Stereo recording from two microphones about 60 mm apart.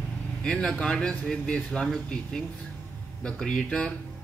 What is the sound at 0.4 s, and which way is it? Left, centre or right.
Speech, centre.